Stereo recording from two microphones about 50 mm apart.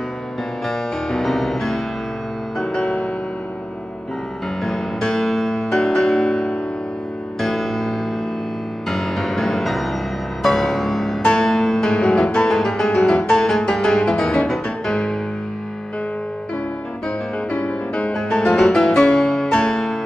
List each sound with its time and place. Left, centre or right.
0.7 s music: centre
2.6 s music: centre
4.6 s music: centre
7.4 s music: centre
8.9 s music: centre
18.1 s music: centre